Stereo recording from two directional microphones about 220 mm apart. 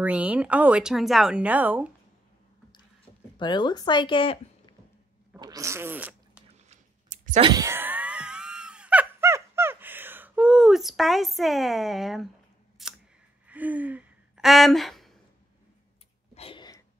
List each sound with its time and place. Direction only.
0.0 s speech: 5° right (ahead or behind)
3.3 s speech: 20° left (ahead or behind)
5.4 s fart: 15° right (ahead or behind)
6.7 s clicking: 30° right (ahead or behind)
7.4 s screaming: 15° right (ahead or behind)
12.8 s scissors: centre (ahead or behind)
13.5 s a sound: 5° right (ahead or behind)
16.3 s a sound: 25° left (ahead or behind)